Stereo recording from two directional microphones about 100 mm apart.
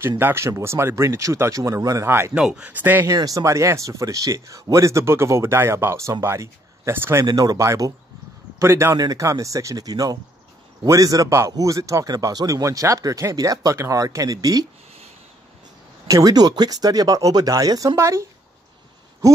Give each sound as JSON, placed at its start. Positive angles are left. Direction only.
{"t": 0.2, "sound": "a man's voice", "side_deg": -25}
{"t": 2.3, "sound": "speech", "side_deg": -10}
{"t": 3.1, "sound": "speech", "side_deg": -35}
{"t": 7.2, "sound": "a man's voice", "side_deg": -40}
{"t": 16.1, "sound": "a man's voice", "side_deg": -35}